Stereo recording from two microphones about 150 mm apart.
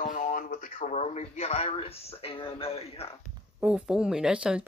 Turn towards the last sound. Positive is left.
turn(degrees=-5)  # may be behind; listen again after turning